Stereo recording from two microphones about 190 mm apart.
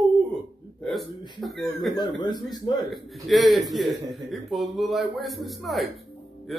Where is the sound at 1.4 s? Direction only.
Centre (ahead or behind).